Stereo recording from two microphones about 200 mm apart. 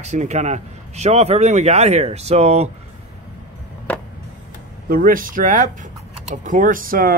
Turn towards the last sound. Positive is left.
turn(degrees=-45)  # may be behind; listen again after turning